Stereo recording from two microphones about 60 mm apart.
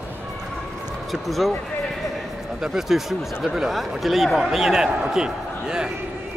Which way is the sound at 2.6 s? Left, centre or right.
Centre.